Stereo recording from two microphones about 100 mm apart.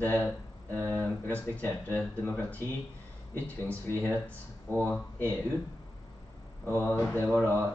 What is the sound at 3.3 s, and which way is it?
Speech, 20° left (ahead or behind).